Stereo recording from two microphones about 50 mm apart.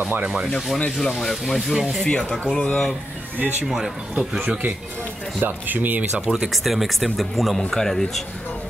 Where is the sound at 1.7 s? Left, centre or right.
Centre.